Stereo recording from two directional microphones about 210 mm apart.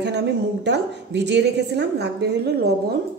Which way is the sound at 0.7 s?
55° right (ahead or behind).